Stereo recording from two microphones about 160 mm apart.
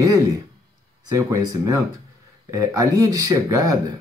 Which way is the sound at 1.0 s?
20° right (ahead or behind).